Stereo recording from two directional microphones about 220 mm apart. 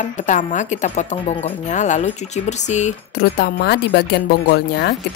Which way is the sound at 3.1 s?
50° left (ahead or behind).